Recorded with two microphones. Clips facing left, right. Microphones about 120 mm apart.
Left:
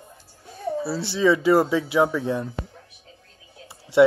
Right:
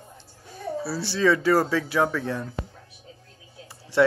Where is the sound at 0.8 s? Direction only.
20° left (ahead or behind).